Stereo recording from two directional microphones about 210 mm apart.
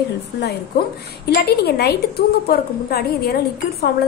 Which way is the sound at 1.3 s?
50° left (ahead or behind).